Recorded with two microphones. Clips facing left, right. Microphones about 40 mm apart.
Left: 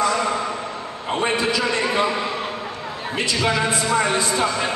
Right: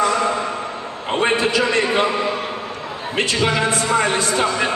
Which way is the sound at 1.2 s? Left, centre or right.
Right.